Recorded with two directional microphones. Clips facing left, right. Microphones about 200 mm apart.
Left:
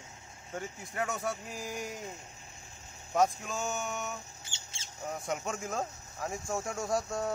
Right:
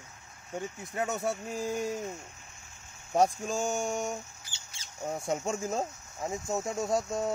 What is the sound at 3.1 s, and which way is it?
Speech, 30° right (ahead or behind).